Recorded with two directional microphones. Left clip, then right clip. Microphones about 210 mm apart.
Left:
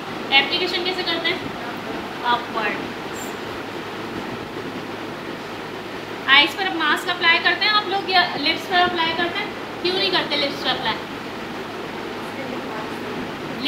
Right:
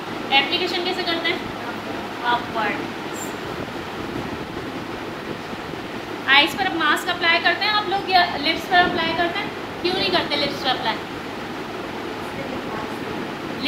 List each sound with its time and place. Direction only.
0.3 s a woman's voice: 20° right (ahead or behind)
6.2 s a woman's voice: 30° right (ahead or behind)